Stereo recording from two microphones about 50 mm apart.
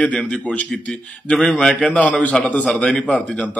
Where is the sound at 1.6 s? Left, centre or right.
Centre.